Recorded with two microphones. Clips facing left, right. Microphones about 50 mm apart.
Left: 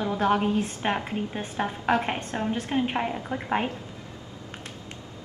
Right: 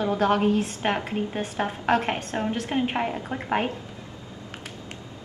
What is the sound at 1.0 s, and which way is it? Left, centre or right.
Speech, centre.